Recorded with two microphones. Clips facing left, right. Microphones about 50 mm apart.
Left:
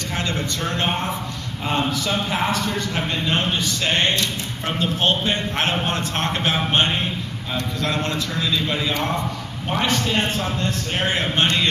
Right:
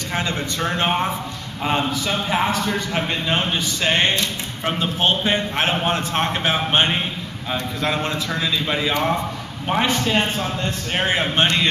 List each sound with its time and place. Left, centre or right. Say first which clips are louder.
0.1 s speech: right 2 dB; centre